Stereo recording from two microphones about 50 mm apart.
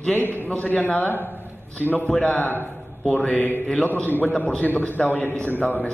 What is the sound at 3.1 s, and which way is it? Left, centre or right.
Mantra, left.